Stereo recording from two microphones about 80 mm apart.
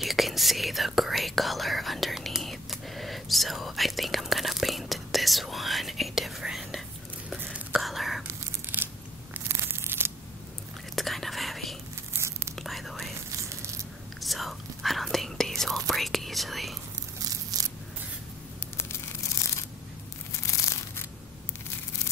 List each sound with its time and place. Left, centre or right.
0.0 s speech: centre
7.8 s speech: centre
8.7 s scissors: right
9.5 s tearing: right
11.0 s whispering: centre
12.2 s whispering: right
12.5 s whispering: centre
14.2 s whispering: centre
17.2 s tearing: right